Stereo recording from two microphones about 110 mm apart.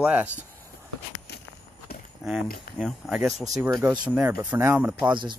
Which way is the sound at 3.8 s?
15° right (ahead or behind).